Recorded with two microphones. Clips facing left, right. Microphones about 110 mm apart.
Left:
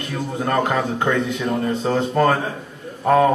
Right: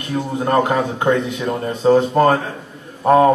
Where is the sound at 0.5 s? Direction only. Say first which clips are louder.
Right 3 dB; 20° right (ahead or behind).